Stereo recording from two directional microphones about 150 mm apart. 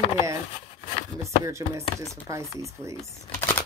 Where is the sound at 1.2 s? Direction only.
20° right (ahead or behind).